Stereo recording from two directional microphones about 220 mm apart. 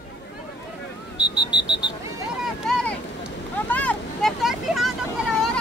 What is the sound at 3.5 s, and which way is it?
Vehicle, 5° left (ahead or behind).